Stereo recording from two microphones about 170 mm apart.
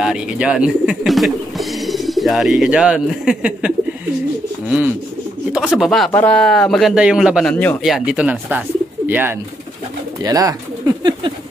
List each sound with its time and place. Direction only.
0.0 s speech: 5° right (ahead or behind)
10.2 s pigeon: 20° right (ahead or behind)